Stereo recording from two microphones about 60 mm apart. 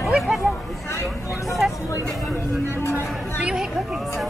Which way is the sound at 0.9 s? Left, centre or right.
Left.